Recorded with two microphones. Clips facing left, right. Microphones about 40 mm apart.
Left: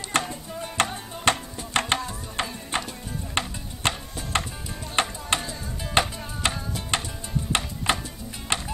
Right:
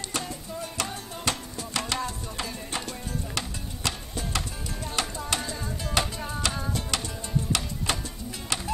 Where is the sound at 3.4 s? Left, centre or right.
Left.